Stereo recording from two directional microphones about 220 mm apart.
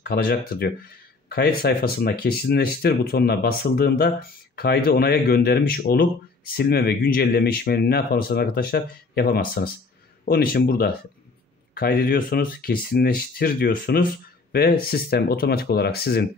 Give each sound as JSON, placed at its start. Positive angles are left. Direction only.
{"t": 0.0, "sound": "speech", "side_deg": 45}